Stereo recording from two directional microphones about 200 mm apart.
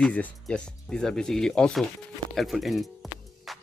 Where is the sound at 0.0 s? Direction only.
5° left (ahead or behind).